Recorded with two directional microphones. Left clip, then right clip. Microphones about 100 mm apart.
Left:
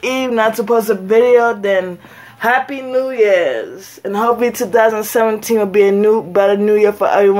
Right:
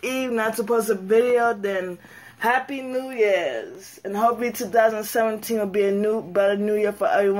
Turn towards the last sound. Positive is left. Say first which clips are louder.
# left 9 dB
turn(degrees=25)  # may be behind; listen again after turning